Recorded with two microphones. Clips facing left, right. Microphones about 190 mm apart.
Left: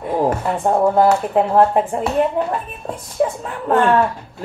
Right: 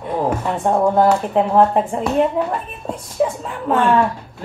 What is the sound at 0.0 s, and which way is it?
A woman's voice, 5° left (ahead or behind).